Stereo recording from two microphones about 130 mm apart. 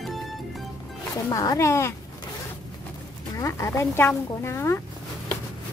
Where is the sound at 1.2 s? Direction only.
25° left (ahead or behind).